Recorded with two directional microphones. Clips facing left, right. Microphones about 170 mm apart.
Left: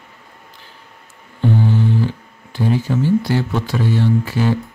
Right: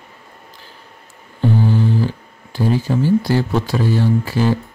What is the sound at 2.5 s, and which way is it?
Speech, 35° right (ahead or behind).